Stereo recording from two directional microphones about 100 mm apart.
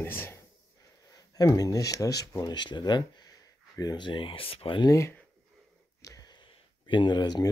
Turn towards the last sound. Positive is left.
turn(degrees=45)  # may be behind; listen again after turning